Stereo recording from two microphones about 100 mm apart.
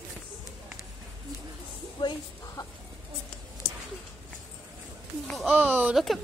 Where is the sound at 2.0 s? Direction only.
35° left (ahead or behind).